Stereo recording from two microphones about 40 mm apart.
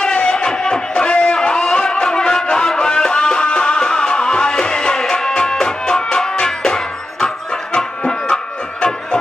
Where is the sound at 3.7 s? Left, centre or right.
Centre.